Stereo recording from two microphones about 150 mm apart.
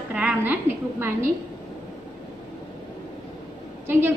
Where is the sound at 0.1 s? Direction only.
10° right (ahead or behind).